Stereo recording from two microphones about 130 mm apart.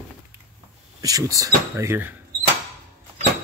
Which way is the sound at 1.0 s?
25° right (ahead or behind).